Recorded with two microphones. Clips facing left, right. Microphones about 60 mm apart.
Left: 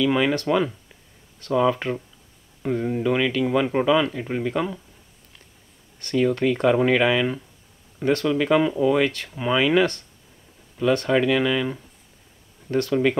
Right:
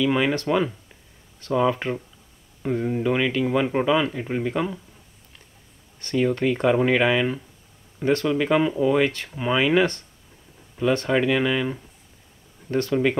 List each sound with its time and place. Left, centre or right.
0.0 s speech: centre
3.0 s speech: centre
3.4 s speech: centre
5.9 s speech: right
8.3 s speech: centre
10.8 s speech: right
12.9 s speech: centre